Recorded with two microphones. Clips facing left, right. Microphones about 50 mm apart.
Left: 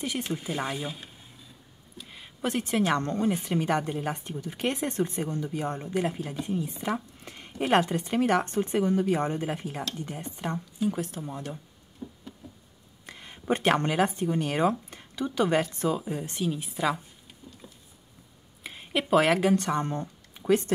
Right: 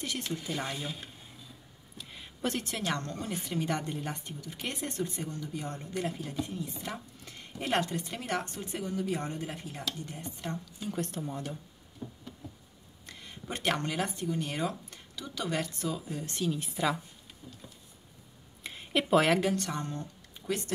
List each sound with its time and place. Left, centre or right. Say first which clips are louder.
0.0 s speech: left 4 dB; centre
2.0 s a sound: left 3 dB; centre
2.7 s speech: left 8 dB; left
6.7 s speech: left 8 dB; centre
8.5 s speech: left 11 dB; left
9.2 s speech: left 8 dB; left
10.8 s speech: left 6 dB; centre
12.0 s a sound: left 2 dB; centre
13.0 s speech: left 7 dB; left
16.3 s speech: left 2 dB; centre
17.4 s a sound: left 1 dB; centre
18.6 s a sound: left 1 dB; centre
19.5 s speech: left 8 dB; left